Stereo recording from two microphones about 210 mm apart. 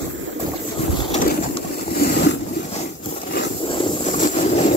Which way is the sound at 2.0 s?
50° left (ahead or behind).